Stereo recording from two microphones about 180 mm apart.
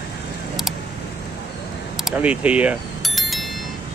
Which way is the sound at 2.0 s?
5° right (ahead or behind).